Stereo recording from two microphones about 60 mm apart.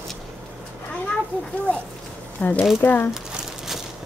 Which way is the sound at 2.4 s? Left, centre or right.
Left.